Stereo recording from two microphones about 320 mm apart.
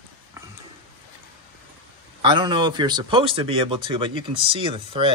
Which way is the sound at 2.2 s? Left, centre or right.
Centre.